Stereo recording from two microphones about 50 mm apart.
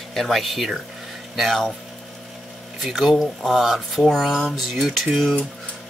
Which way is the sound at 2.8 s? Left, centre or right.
Centre.